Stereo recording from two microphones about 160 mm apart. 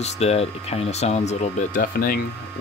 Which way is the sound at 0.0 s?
40° left (ahead or behind).